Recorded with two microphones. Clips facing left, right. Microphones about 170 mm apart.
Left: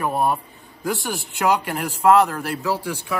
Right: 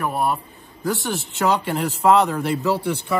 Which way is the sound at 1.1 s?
5° left (ahead or behind).